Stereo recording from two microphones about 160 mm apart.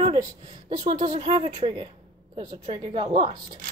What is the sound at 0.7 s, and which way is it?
Speech, 55° right (ahead or behind).